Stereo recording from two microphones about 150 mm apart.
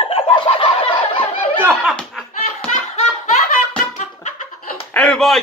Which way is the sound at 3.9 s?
60° left (ahead or behind).